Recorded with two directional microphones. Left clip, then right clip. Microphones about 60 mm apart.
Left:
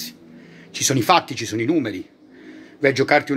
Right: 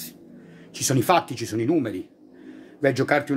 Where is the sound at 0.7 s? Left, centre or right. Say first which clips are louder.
Left 4 dB; centre.